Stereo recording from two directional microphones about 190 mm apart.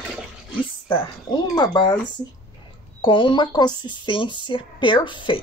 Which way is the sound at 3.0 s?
25° left (ahead or behind).